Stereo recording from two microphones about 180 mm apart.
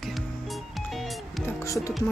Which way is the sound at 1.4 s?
15° left (ahead or behind).